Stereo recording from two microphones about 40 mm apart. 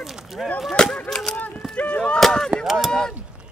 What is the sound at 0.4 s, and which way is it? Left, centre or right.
Speech, centre.